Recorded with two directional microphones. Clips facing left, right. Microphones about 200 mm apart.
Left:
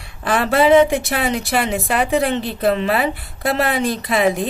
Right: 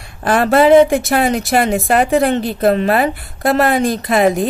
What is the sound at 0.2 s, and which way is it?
A woman's voice, 45° right (ahead or behind).